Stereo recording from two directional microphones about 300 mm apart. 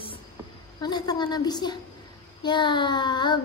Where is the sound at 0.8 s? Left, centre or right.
Centre.